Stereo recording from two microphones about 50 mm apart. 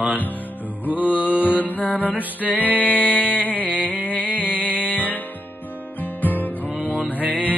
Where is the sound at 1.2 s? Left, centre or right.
Right.